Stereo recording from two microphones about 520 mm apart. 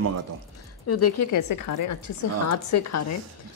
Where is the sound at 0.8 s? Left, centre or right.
Left.